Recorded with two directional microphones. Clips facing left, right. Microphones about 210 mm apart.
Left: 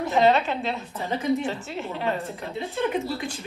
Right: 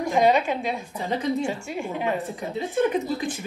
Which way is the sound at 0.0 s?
10° right (ahead or behind).